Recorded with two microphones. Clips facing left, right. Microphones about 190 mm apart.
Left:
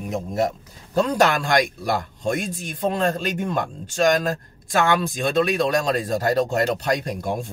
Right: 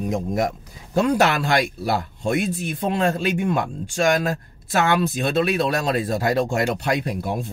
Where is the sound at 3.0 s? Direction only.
10° right (ahead or behind).